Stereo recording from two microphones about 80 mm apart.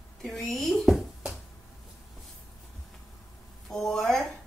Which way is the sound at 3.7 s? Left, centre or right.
Centre.